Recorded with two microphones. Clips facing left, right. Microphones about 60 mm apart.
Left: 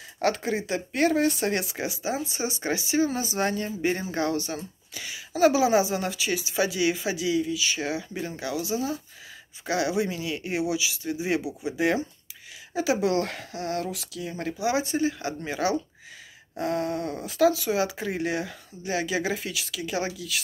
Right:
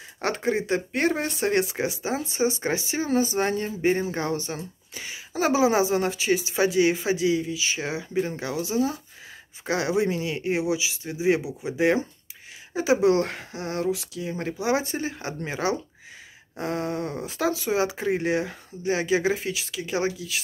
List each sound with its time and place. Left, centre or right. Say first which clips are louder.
0.2 s speech: even; right
14.6 s speech: left 1 dB; right